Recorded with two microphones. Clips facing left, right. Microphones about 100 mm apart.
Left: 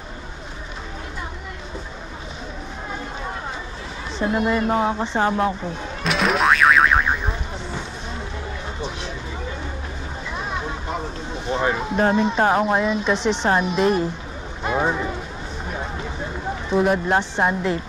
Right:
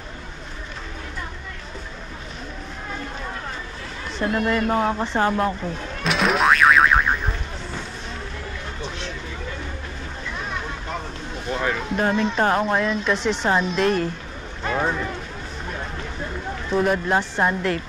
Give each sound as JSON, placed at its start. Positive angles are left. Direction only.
{"t": 4.2, "sound": "speech", "side_deg": 15}
{"t": 6.0, "sound": "boing", "side_deg": 0}
{"t": 10.3, "sound": "vehicle", "side_deg": 15}
{"t": 11.4, "sound": "speech", "side_deg": 20}
{"t": 13.5, "sound": "speech", "side_deg": 10}
{"t": 15.7, "sound": "a sound", "side_deg": 15}
{"t": 16.6, "sound": "speech", "side_deg": 10}